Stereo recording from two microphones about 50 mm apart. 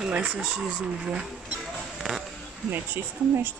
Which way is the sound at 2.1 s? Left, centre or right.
Centre.